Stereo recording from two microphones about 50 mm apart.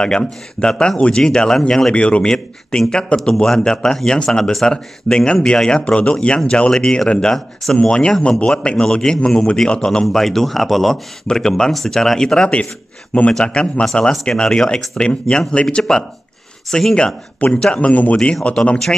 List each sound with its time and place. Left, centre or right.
0.0 s speech: centre
2.0 s speech: left
10.0 s speech: centre
13.9 s speech: left
17.7 s speech: left